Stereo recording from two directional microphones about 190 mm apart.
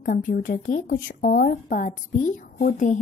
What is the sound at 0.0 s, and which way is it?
Speech, 45° left (ahead or behind).